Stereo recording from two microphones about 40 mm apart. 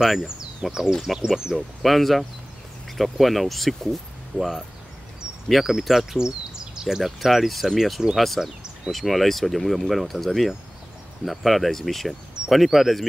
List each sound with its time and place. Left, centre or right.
0.0 s speech: centre
0.4 s speech: centre
1.8 s speech: centre
5.7 s speech: centre
6.1 s bird: centre
7.0 s speech: centre
8.4 s a sound: centre
8.9 s speech: centre